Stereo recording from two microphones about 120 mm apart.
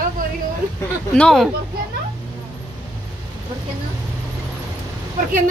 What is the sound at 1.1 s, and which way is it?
Speech, 5° left (ahead or behind).